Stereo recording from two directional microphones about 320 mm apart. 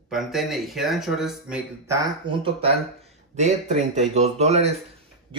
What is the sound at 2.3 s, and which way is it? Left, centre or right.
Speech, centre.